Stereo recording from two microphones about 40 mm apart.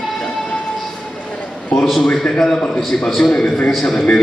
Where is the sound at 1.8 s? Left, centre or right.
Centre.